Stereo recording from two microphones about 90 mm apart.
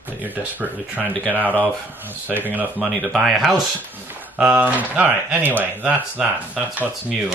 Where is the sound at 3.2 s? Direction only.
5° right (ahead or behind).